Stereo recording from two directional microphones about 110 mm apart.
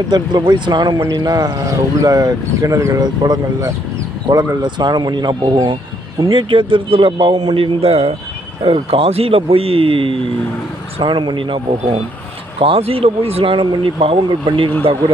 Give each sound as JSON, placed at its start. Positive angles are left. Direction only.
{"t": 0.1, "sound": "speech", "side_deg": -40}